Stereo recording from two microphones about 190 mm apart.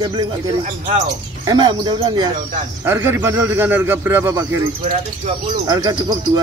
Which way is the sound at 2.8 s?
10° right (ahead or behind).